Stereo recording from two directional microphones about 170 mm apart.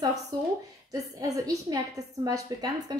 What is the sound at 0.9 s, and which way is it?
A woman's voice, 20° right (ahead or behind).